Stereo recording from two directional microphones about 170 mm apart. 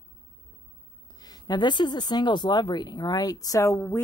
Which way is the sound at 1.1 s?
25° left (ahead or behind).